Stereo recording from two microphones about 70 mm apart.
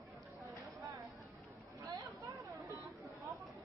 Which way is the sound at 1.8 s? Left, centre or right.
Right.